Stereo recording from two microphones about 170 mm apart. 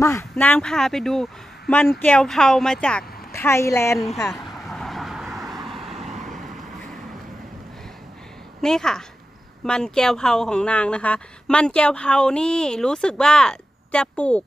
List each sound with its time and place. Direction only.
0.0 s a woman's voice: 15° left (ahead or behind)
3.3 s a woman's voice: 15° left (ahead or behind)
4.3 s vehicle: centre (ahead or behind)
5.9 s vehicle: 40° right (ahead or behind)
8.5 s a woman's voice: 5° left (ahead or behind)